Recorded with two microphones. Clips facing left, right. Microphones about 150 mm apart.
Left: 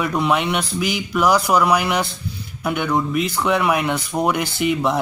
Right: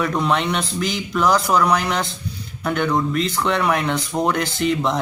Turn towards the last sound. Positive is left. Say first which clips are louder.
# left 1 dB
turn(degrees=5)  # may be behind; listen again after turning